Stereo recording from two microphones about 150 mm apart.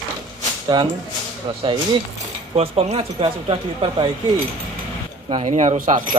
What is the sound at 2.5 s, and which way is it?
Speech, 40° right (ahead or behind).